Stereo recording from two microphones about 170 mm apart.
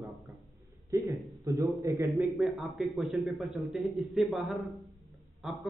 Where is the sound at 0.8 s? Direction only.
20° right (ahead or behind).